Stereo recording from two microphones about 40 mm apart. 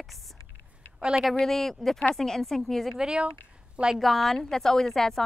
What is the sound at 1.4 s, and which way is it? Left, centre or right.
A woman's voice, centre.